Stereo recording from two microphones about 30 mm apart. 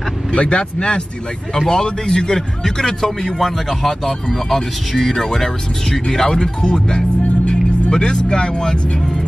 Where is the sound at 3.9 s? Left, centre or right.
Left.